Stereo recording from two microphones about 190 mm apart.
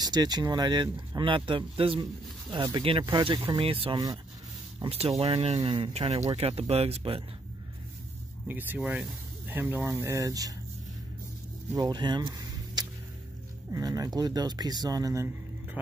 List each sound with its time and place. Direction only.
0.0 s speech: 20° right (ahead or behind)
8.5 s speech: 10° right (ahead or behind)
11.7 s speech: 20° right (ahead or behind)